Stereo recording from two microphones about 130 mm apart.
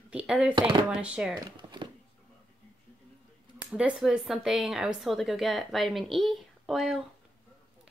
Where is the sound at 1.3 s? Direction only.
35° right (ahead or behind).